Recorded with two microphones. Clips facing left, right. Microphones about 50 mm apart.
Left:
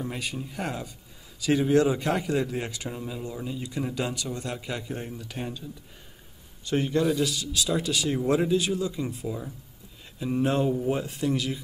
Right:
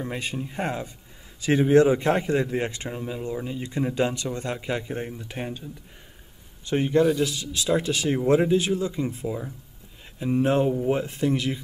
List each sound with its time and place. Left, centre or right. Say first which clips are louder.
0.0 s a man's voice: right 3 dB; right
2.9 s speech: right 4 dB; right
10.1 s speech: right 3 dB; centre